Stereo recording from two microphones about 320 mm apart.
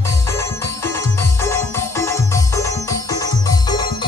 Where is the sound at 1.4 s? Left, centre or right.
Centre.